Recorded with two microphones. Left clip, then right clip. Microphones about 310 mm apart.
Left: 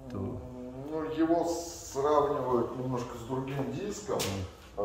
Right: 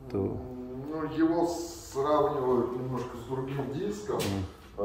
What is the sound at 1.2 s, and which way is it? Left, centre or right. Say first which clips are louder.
Speech: right 1 dB; centre.